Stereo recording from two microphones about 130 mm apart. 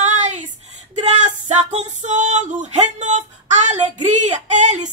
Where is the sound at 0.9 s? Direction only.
60° right (ahead or behind).